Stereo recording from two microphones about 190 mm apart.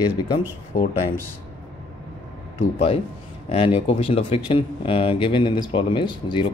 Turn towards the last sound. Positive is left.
turn(degrees=25)  # may be behind; listen again after turning